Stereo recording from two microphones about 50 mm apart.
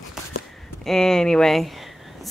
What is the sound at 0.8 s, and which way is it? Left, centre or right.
Speech, centre.